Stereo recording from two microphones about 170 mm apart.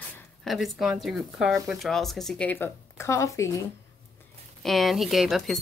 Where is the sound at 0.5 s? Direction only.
Centre (ahead or behind); by 3.5 s 15° left (ahead or behind).